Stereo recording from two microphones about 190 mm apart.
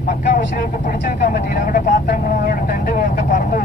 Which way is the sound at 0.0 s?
45° left (ahead or behind).